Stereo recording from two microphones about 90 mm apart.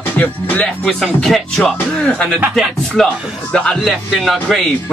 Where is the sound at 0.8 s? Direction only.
5° left (ahead or behind).